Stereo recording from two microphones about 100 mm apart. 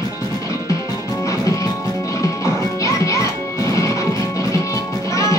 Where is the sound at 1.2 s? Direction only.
35° left (ahead or behind).